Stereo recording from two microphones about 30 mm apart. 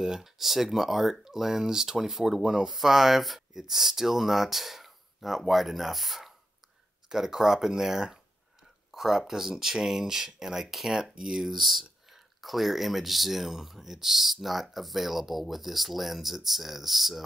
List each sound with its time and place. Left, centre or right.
0.0 s speech: centre
7.1 s speech: centre
11.4 s speech: centre